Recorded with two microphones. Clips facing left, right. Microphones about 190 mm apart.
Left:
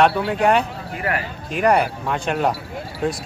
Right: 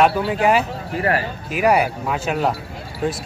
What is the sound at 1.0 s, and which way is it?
Speech, 30° right (ahead or behind).